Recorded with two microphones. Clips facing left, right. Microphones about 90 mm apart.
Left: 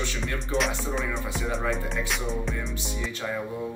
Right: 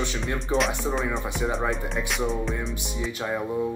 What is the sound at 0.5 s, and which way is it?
Speech, 20° right (ahead or behind).